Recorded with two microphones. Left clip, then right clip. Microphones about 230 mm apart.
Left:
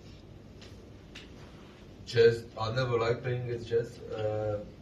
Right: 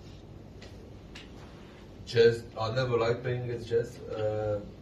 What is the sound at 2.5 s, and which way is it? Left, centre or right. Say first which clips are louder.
A man's voice: right 2 dB; centre.